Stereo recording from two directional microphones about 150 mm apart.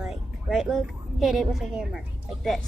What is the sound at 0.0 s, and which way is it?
A woman's voice, centre (ahead or behind).